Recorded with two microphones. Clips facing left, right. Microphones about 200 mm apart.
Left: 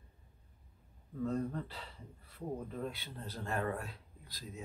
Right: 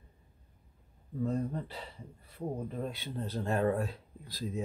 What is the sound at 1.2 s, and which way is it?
Speech, 15° right (ahead or behind).